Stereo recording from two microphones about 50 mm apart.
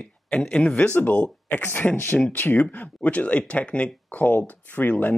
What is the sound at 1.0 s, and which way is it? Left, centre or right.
Speech, left.